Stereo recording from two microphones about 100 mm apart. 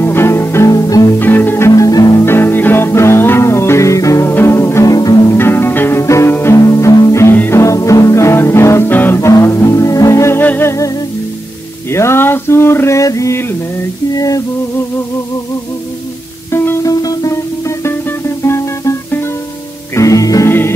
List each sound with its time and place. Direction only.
0.0 s music: 25° left (ahead or behind)
0.7 s music: 35° left (ahead or behind)
1.2 s music: 20° left (ahead or behind)
1.7 s music: 40° left (ahead or behind)
2.2 s music: 25° left (ahead or behind); by 5.2 s 40° left (ahead or behind)
5.3 s music: 25° left (ahead or behind)
11.9 s a sound: 25° left (ahead or behind)
16.5 s music: 25° left (ahead or behind)
16.9 s music: 35° left (ahead or behind)
20.0 s music: 35° left (ahead or behind)